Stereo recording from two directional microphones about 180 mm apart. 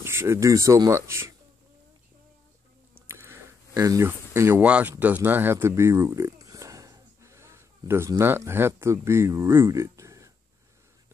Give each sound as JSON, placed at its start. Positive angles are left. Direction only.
{"t": 0.0, "sound": "speech", "side_deg": -15}
{"t": 3.1, "sound": "speech", "side_deg": -15}